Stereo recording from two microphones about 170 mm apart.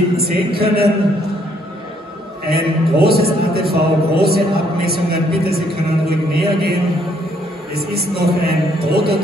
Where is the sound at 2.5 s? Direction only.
65° right (ahead or behind).